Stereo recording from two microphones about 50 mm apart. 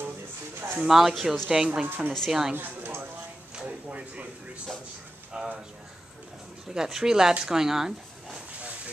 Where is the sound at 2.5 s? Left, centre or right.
Right.